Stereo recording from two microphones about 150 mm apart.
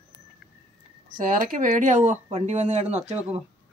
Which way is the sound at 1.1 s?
65° right (ahead or behind).